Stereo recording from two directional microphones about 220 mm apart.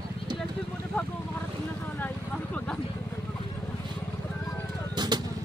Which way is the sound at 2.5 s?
5° left (ahead or behind).